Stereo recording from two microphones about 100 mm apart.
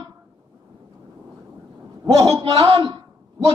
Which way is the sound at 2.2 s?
45° right (ahead or behind).